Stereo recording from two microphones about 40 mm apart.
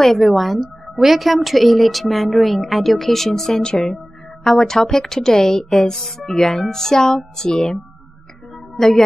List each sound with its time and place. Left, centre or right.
0.0 s a woman's voice: centre
8.7 s speech: centre